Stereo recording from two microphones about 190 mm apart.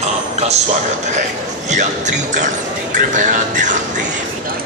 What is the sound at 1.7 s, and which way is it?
Speech, 40° right (ahead or behind).